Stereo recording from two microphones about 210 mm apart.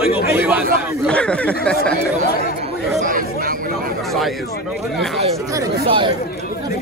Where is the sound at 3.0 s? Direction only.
40° right (ahead or behind).